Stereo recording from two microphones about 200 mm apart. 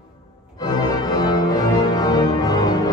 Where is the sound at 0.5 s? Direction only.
20° left (ahead or behind).